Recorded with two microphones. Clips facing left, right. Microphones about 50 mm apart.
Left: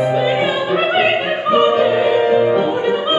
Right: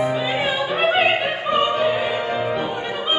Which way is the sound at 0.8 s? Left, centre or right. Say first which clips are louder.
Even; left.